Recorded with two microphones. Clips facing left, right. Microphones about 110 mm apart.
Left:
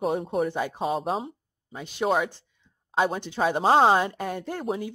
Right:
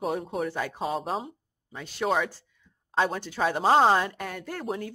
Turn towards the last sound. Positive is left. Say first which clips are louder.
# left 4 dB
turn(degrees=20)  # may be behind; listen again after turning